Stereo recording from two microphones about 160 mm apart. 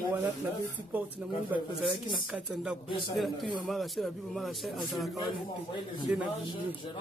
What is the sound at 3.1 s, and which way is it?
A man's voice, centre (ahead or behind).